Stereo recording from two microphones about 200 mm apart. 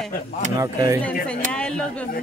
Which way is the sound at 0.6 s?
15° right (ahead or behind).